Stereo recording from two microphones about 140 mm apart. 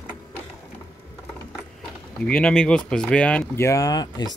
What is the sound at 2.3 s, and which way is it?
Speech, 5° left (ahead or behind).